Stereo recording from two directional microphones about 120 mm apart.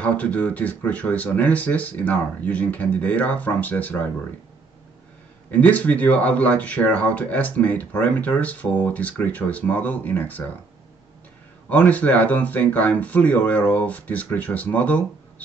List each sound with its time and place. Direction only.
0.0 s speech: 10° left (ahead or behind)
5.5 s speech: 15° left (ahead or behind)
11.7 s speech: 15° left (ahead or behind)